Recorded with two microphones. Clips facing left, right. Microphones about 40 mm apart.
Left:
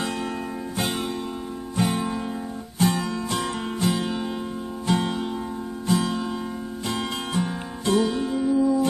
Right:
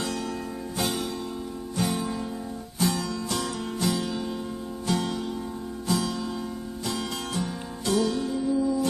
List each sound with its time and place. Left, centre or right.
1.8 s music: left